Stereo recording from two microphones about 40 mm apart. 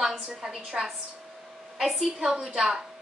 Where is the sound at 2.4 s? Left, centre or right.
Centre.